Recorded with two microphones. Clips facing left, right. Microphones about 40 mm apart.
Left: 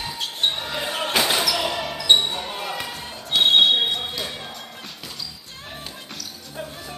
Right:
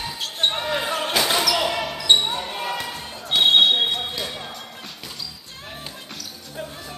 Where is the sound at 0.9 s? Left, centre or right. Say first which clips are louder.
Left 2 dB; centre.